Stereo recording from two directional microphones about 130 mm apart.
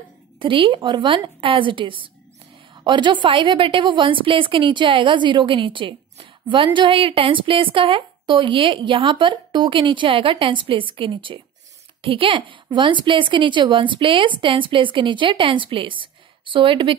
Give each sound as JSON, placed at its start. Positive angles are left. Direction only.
{"t": 0.4, "sound": "a woman's voice", "side_deg": -40}